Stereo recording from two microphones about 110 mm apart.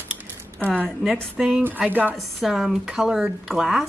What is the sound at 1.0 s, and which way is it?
Speech, centre (ahead or behind).